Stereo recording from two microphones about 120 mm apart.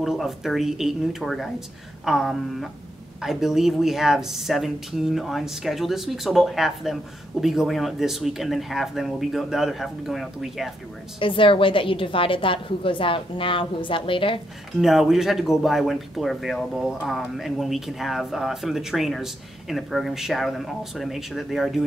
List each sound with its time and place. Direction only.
0.0 s speech: centre (ahead or behind)
11.1 s a woman's voice: 45° left (ahead or behind)
14.8 s speech: centre (ahead or behind)